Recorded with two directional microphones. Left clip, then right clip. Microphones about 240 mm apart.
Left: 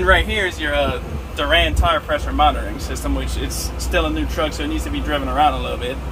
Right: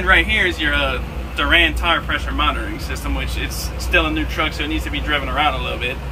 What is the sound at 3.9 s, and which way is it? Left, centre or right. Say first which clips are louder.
A man's voice: right 3 dB; left.